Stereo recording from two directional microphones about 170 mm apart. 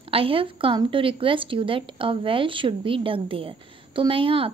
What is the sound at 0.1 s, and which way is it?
Speech, 30° right (ahead or behind).